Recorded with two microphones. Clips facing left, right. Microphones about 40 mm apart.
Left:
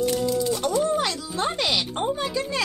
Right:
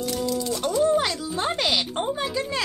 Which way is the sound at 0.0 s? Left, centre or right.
Left.